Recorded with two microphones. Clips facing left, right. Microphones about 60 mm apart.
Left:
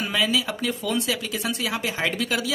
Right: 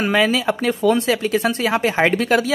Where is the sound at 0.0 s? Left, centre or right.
Right.